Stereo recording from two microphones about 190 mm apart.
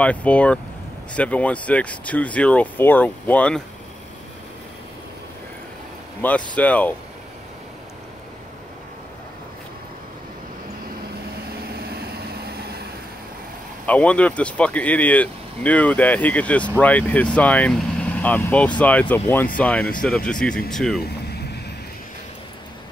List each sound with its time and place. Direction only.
0.0 s speech: 5° left (ahead or behind)
6.5 s speech: 5° left (ahead or behind)
11.6 s vehicle: 55° right (ahead or behind)
13.8 s speech: 5° left (ahead or behind)
21.0 s vehicle: 60° left (ahead or behind)